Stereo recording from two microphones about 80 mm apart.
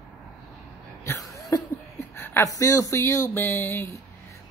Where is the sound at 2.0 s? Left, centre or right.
Left.